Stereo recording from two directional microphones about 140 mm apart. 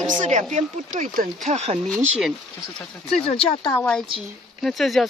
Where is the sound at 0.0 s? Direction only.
65° right (ahead or behind).